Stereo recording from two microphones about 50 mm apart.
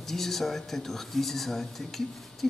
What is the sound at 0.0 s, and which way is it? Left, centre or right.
Speech, centre.